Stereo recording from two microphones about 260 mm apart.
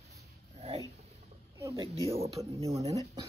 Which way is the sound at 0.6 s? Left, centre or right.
Right.